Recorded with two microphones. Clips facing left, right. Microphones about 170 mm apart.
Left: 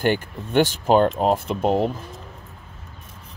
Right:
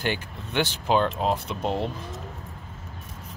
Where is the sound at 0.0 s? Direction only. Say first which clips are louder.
Left 7 dB; 50° left (ahead or behind).